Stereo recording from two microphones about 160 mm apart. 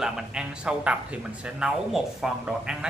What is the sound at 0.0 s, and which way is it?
Speech, 5° right (ahead or behind).